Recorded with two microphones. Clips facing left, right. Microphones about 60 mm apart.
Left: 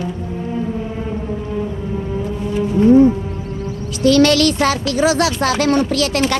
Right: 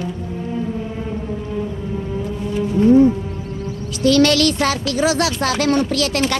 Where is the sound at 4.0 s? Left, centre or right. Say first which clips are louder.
Left 2 dB; left.